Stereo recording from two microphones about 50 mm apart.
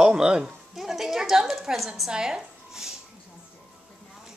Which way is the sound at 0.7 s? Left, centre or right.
Centre.